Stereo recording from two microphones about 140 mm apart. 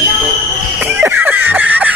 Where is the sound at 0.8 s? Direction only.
15° right (ahead or behind).